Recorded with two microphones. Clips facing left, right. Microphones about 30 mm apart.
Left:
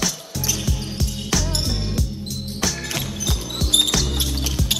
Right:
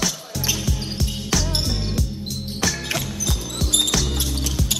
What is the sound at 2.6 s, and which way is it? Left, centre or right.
Music, centre.